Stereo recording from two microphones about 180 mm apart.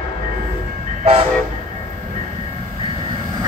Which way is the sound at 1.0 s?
35° right (ahead or behind).